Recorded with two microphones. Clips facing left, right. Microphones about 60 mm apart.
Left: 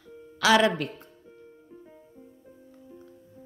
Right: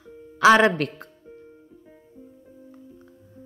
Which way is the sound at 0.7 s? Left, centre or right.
Right.